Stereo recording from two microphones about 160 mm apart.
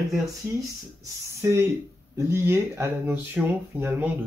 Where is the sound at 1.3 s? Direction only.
20° right (ahead or behind).